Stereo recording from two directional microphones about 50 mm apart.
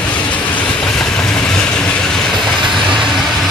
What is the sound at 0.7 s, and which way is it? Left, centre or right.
Vehicle, centre.